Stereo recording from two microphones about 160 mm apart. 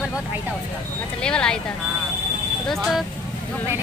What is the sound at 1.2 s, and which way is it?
Speech, 5° left (ahead or behind).